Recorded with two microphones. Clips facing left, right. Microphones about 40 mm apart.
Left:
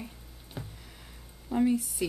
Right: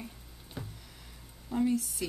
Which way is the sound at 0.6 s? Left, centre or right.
Centre.